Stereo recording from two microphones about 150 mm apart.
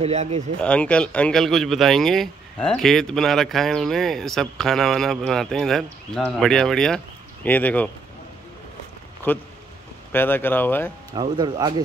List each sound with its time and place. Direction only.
0.0 s speech: 45° right (ahead or behind)
0.6 s speech: 10° left (ahead or behind)
9.3 s speech: 10° left (ahead or behind)
11.1 s speech: 25° right (ahead or behind)